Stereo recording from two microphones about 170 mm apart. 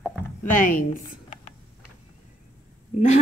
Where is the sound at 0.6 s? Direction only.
55° left (ahead or behind).